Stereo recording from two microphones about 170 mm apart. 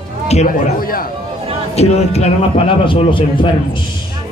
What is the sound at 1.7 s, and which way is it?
A man's voice, 40° left (ahead or behind).